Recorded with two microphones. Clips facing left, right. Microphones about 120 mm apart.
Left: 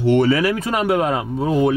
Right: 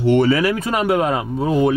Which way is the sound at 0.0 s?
20° right (ahead or behind).